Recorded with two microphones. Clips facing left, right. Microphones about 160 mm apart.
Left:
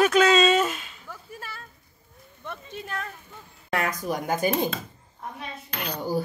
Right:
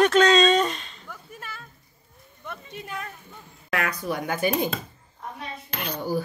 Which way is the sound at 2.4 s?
Centre (ahead or behind).